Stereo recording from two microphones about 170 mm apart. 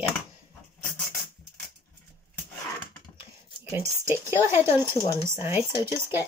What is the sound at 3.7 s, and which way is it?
Speech, 15° right (ahead or behind).